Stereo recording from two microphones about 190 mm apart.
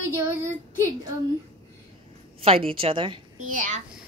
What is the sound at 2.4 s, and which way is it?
Speech, 30° right (ahead or behind).